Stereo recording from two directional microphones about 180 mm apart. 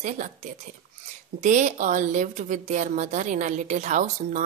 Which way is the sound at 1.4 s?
40° right (ahead or behind).